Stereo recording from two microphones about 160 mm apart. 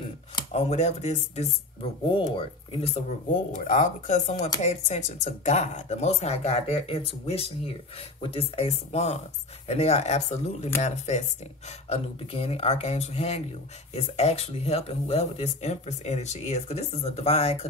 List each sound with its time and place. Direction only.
0.5 s speech: 40° left (ahead or behind)
3.5 s speech: 50° left (ahead or behind)